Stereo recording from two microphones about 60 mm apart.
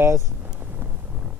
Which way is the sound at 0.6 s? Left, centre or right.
Right.